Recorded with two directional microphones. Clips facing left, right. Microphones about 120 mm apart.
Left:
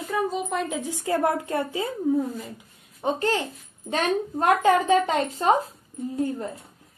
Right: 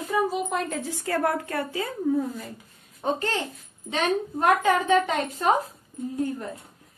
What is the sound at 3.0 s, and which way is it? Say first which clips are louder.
Speech: left 1 dB; 15° left (ahead or behind).